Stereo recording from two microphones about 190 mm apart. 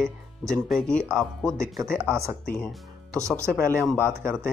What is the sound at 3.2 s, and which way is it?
Speech, 5° left (ahead or behind).